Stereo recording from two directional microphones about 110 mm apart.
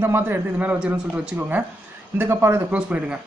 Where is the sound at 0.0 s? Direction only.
20° right (ahead or behind).